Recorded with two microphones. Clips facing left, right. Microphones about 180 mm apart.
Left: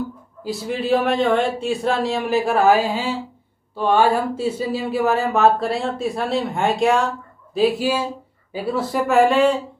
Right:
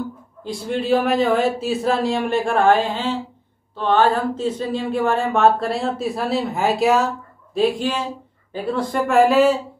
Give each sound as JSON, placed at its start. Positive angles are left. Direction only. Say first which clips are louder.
{"t": 0.4, "sound": "speech", "louder": "even", "side_deg": 5}